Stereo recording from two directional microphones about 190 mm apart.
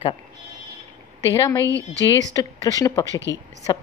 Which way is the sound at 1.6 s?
15° right (ahead or behind).